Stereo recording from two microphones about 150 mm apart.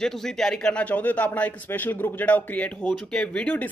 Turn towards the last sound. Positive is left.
turn(degrees=10)  # may be behind; listen again after turning